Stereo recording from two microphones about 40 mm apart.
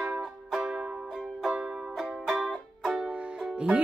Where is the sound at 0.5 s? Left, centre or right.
Centre.